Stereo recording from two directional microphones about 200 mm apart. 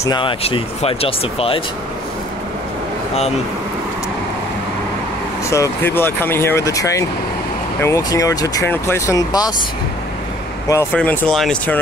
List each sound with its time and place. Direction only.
0.0 s speech: 20° left (ahead or behind)
5.5 s speech: 10° left (ahead or behind)
10.7 s speech: 10° left (ahead or behind)